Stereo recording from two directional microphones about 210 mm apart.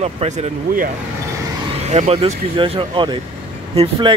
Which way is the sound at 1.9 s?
30° right (ahead or behind).